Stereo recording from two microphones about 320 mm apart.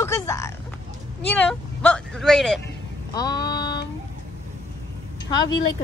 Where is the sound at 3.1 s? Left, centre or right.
Centre.